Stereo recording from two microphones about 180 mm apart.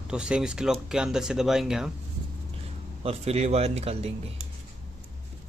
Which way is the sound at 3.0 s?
35° right (ahead or behind).